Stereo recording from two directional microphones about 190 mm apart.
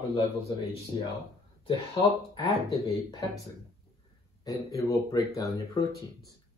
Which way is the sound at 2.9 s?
20° left (ahead or behind).